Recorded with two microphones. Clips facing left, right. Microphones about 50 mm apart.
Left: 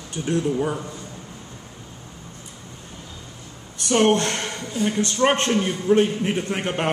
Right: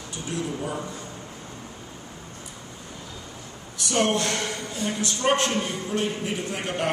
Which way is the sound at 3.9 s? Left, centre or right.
Left.